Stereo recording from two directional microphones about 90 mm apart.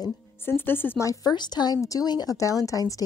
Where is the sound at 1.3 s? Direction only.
50° left (ahead or behind).